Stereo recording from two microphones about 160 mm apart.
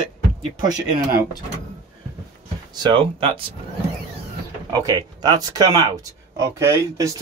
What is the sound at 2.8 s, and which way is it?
Speech, 30° right (ahead or behind).